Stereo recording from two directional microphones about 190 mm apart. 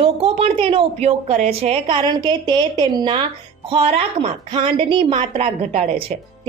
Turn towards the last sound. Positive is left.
turn(degrees=-35)  # may be behind; listen again after turning